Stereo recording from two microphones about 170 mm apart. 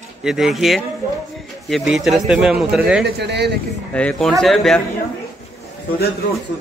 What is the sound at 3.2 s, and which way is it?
Speech, 80° right.